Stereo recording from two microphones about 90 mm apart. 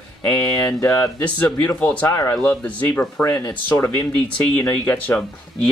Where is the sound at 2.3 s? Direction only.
10° left (ahead or behind).